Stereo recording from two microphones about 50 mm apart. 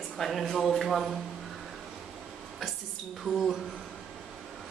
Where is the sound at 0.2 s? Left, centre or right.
Centre.